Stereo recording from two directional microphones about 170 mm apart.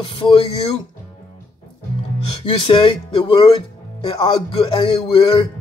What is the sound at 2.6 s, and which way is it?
Speech, 30° left (ahead or behind).